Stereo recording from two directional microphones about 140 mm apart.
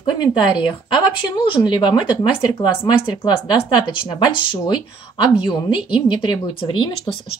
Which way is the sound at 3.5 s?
35° left (ahead or behind).